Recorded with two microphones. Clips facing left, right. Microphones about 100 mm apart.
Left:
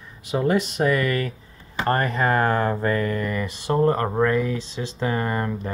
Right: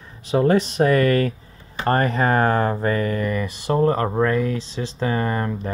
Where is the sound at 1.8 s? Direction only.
30° right (ahead or behind).